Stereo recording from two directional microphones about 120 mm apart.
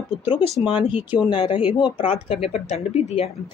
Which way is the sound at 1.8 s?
50° left (ahead or behind).